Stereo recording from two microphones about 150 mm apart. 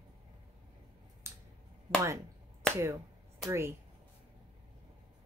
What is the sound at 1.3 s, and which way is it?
Clicking, 20° right (ahead or behind).